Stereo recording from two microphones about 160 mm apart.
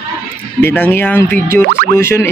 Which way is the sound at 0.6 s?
15° left (ahead or behind).